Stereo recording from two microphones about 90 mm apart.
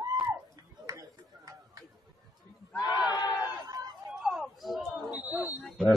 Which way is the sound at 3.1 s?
50° left (ahead or behind).